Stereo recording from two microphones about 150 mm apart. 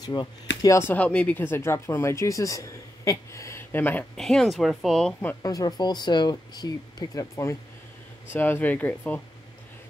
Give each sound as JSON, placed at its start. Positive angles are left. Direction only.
{"t": 0.0, "sound": "speech", "side_deg": 25}
{"t": 4.2, "sound": "speech", "side_deg": 5}
{"t": 5.4, "sound": "speech", "side_deg": 25}